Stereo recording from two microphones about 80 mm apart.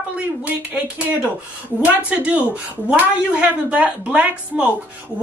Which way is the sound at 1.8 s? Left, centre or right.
Centre.